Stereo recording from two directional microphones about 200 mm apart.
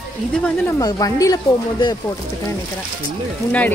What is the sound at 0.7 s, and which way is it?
Speech, 20° left (ahead or behind).